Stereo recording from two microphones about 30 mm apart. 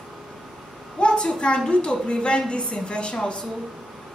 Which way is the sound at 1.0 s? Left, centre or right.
Left.